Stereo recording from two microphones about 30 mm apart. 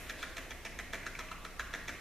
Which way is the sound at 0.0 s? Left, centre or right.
Centre.